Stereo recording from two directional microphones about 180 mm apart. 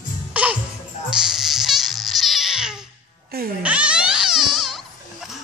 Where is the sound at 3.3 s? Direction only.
55° right (ahead or behind).